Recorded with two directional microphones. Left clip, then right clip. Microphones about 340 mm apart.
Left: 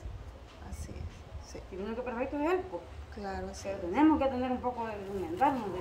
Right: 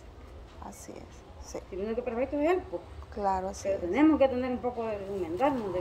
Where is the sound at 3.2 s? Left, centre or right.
Centre.